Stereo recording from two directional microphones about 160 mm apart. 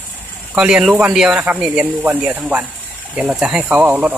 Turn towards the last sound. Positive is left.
turn(degrees=-10)  # may be behind; listen again after turning